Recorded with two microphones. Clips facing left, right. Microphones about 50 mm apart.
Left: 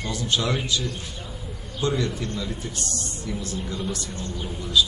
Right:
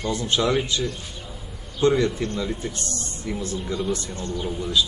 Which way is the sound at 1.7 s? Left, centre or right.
Right.